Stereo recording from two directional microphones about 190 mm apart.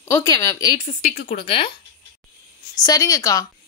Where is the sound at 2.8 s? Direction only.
20° left (ahead or behind).